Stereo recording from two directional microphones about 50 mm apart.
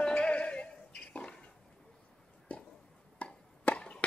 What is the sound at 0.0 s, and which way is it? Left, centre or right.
Music, centre.